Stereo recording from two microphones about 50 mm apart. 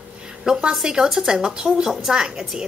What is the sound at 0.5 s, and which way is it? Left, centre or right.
A woman's voice, centre.